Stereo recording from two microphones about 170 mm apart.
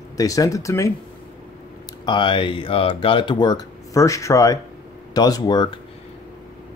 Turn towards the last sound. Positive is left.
turn(degrees=25)  # may be behind; listen again after turning